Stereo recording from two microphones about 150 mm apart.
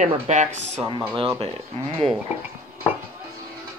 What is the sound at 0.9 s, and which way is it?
Speech, 35° right (ahead or behind).